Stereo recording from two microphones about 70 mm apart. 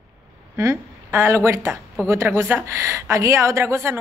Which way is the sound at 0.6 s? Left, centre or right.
Right.